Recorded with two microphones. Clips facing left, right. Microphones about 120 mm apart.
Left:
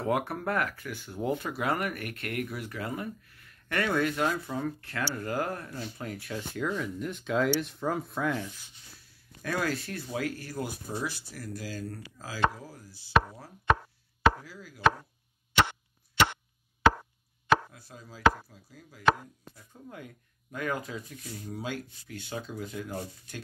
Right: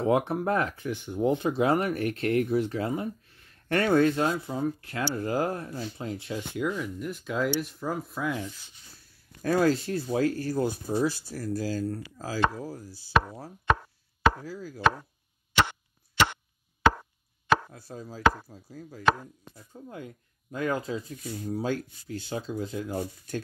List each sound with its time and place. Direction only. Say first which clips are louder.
0.0 s speech: right 5 dB; 20° right (ahead or behind)
6.8 s rub: right 1 dB; 5° right (ahead or behind)
9.4 s speech: right 8 dB; 30° right (ahead or behind)
14.4 s speech: right 9 dB; 35° right (ahead or behind)
17.7 s speech: right 8 dB; 35° right (ahead or behind)
19.5 s speech: right 4 dB; 30° right (ahead or behind)
21.2 s speech: right 7 dB; 40° right (ahead or behind)